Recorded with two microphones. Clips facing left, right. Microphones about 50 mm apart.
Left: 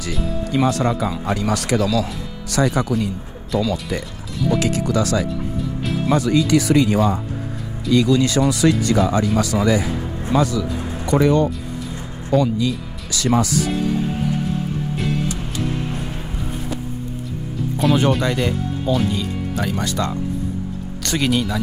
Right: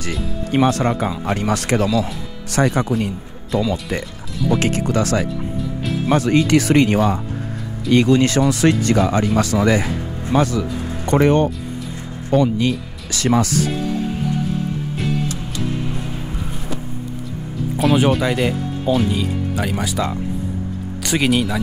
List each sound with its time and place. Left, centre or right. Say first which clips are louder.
0.5 s speech: right 2 dB; right
4.6 s speech: even; right
17.7 s speech: right 2 dB; centre